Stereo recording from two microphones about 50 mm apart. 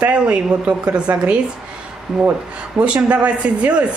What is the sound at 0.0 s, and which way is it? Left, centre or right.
Speech, right.